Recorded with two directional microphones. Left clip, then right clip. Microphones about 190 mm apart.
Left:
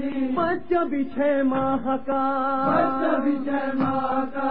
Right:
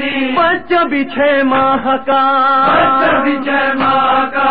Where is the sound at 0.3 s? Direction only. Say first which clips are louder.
Right 11 dB; 45° right (ahead or behind).